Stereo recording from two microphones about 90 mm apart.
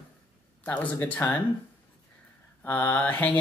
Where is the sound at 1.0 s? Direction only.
20° left (ahead or behind).